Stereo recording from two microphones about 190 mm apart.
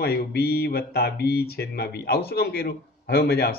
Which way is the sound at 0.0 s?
55° left (ahead or behind).